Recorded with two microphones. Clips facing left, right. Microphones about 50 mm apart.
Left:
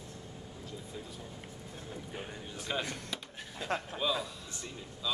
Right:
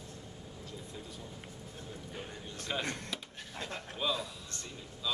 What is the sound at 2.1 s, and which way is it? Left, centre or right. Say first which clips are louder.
Speech: left 1 dB; centre.